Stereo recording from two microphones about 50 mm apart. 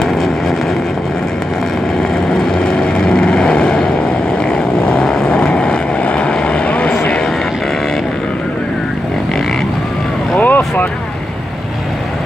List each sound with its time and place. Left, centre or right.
0.0 s vehicle: centre
2.1 s vehicle: centre
10.4 s vehicle: left